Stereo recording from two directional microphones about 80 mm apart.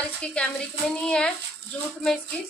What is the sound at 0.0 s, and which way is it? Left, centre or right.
Speech, centre.